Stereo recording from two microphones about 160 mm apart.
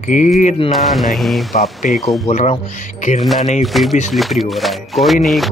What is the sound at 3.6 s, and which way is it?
Speech, centre (ahead or behind).